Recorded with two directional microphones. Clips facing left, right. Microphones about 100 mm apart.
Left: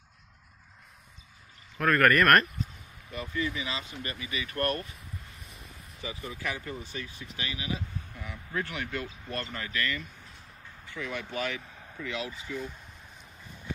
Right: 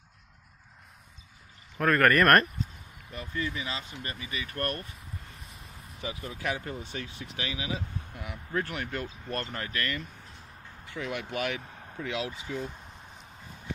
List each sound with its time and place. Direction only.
1.8 s speech: 30° right (ahead or behind)
6.0 s speech: 65° right (ahead or behind); by 7.7 s 90° right
8.5 s speech: 40° right (ahead or behind); by 12.3 s 70° right (ahead or behind)
12.5 s speech: 50° right (ahead or behind)